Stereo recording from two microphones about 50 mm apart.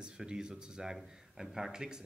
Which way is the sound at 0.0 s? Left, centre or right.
Centre.